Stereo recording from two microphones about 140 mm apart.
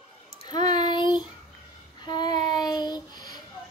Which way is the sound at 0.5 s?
30° left (ahead or behind).